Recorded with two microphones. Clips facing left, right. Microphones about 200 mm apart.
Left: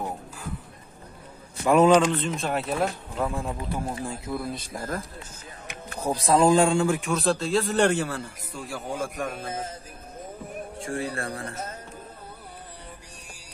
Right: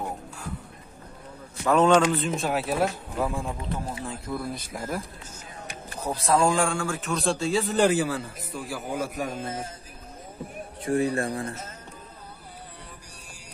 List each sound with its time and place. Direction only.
1.7 s a man's voice: 10° left (ahead or behind)
2.0 s speech: 5° right (ahead or behind)
4.7 s speech: 10° right (ahead or behind)
5.9 s speech: 15° left (ahead or behind)
7.0 s speech: 5° left (ahead or behind)
10.9 s speech: 20° right (ahead or behind)